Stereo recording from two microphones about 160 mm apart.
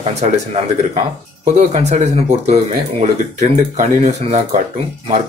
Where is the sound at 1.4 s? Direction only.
45° right (ahead or behind).